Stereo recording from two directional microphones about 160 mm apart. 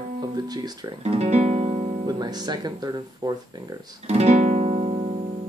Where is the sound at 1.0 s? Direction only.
40° right (ahead or behind).